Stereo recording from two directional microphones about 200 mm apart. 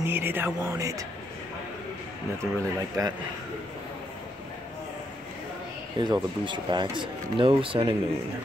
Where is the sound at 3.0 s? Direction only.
15° right (ahead or behind).